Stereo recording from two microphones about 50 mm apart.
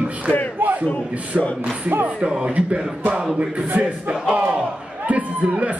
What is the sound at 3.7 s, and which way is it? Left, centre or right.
A man's voice, right.